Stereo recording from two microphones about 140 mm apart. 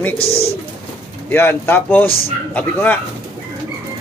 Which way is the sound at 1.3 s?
15° left (ahead or behind).